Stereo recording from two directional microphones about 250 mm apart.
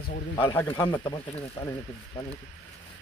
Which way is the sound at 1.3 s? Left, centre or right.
Centre.